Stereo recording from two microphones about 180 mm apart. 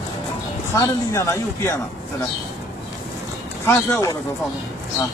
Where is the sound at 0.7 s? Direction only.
15° left (ahead or behind).